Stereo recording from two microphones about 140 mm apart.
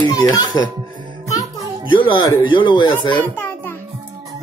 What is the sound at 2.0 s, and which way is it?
Speech, 35° left (ahead or behind).